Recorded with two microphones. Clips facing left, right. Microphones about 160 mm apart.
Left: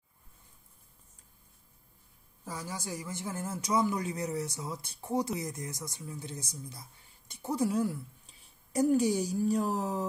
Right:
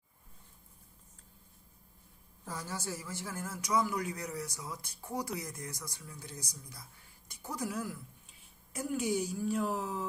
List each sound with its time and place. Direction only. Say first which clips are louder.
2.4 s a man's voice: left 1 dB; 10° left (ahead or behind); by 10.0 s 40° left (ahead or behind)